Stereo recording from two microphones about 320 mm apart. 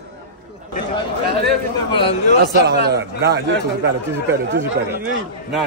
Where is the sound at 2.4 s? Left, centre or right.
Right.